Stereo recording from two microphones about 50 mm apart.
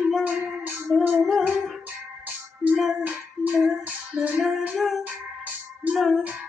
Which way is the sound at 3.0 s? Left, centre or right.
Right.